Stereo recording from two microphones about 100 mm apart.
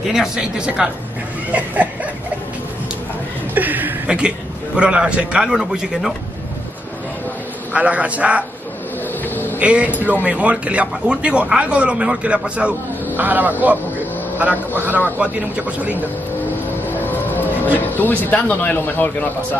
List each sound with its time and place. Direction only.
0.0 s speech: 5° right (ahead or behind)
3.5 s chuckle: 15° right (ahead or behind)
4.7 s speech: 10° right (ahead or behind)
7.7 s speech: 15° right (ahead or behind)
9.3 s vehicle: 20° left (ahead or behind)
9.6 s a man's voice: 10° right (ahead or behind)
16.9 s a sound: 20° left (ahead or behind)
17.7 s a man's voice: 20° left (ahead or behind)